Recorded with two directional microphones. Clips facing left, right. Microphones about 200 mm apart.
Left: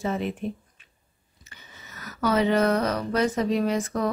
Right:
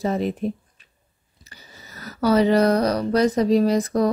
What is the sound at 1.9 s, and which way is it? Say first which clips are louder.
Speech: right 5 dB; 35° right (ahead or behind).